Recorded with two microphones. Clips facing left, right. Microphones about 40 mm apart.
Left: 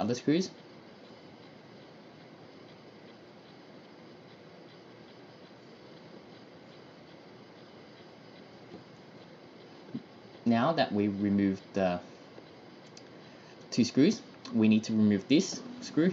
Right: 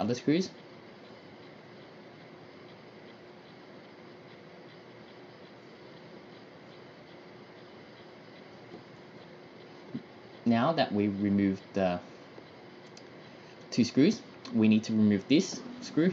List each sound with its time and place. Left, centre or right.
0.0 s speech: centre
9.9 s a sound: centre
10.4 s speech: centre
13.7 s speech: centre